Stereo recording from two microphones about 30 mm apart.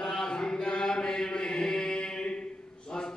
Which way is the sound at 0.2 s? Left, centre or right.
Left.